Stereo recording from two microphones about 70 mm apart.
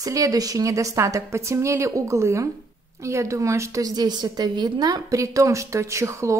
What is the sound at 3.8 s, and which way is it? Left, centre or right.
A woman's voice, right.